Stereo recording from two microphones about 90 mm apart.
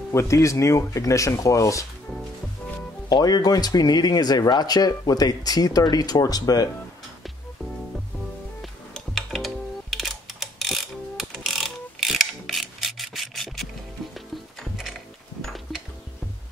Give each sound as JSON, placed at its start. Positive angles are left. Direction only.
{"t": 0.1, "sound": "speech", "side_deg": 35}
{"t": 3.1, "sound": "speech", "side_deg": 50}
{"t": 8.9, "sound": "mechanisms", "side_deg": 0}
{"t": 14.1, "sound": "music", "side_deg": 0}
{"t": 15.4, "sound": "a sound", "side_deg": 0}